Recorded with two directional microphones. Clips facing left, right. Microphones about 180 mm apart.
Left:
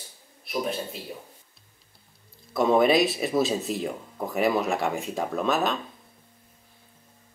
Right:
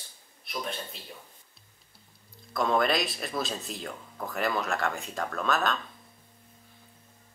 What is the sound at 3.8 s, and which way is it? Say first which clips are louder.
Speech: left 6 dB; 20° left (ahead or behind).